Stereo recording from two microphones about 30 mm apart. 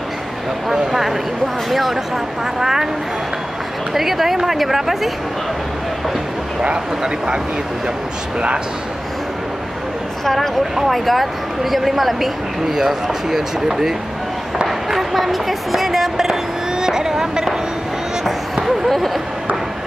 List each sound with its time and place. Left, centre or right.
0.7 s speech: centre
2.6 s speech: centre
3.9 s speech: centre
10.2 s speech: centre
10.9 s a woman's voice: centre
16.8 s a sound: centre